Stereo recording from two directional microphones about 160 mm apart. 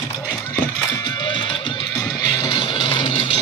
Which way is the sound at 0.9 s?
30° left (ahead or behind).